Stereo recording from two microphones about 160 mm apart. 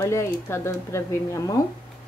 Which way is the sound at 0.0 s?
15° left (ahead or behind).